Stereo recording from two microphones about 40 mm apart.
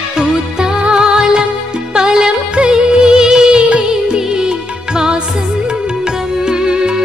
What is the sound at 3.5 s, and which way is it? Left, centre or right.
Music, right.